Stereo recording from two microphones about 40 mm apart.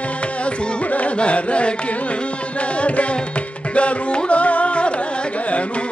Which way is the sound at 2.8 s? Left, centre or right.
Left.